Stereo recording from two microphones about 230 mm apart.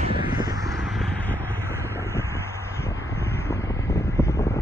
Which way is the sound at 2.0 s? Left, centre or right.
Centre.